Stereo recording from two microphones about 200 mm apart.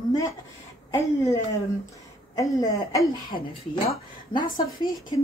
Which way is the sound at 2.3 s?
15° left (ahead or behind).